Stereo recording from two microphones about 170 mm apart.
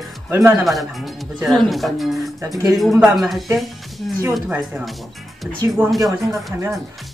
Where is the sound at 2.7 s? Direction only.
Centre (ahead or behind).